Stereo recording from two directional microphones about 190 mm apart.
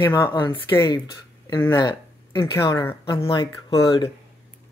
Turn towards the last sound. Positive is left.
turn(degrees=25)  # may be behind; listen again after turning